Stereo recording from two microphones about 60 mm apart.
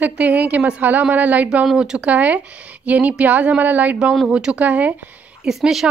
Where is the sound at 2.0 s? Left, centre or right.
Right.